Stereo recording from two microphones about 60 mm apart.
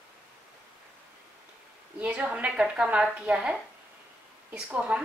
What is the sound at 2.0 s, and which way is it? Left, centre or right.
A woman's voice, right.